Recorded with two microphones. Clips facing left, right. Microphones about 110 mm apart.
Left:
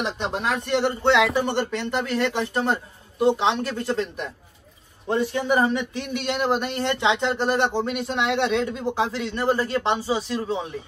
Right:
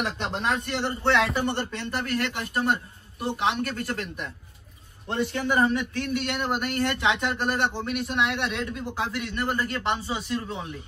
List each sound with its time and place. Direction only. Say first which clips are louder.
0.0 s a man's voice: left 2 dB; 20° left (ahead or behind)